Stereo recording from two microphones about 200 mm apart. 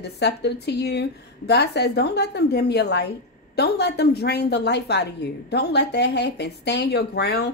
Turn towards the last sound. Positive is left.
turn(degrees=55)  # may be behind; listen again after turning